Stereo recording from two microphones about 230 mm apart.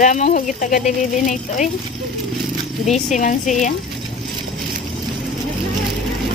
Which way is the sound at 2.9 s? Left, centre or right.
Left.